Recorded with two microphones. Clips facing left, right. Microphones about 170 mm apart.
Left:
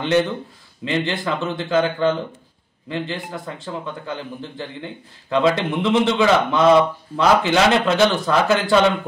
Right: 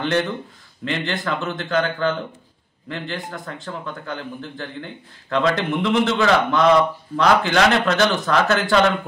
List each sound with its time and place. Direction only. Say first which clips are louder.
0.0 s speech: left 3 dB; centre (ahead or behind)